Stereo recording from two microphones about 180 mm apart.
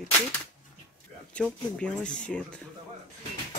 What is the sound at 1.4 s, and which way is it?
Speech, 5° left (ahead or behind).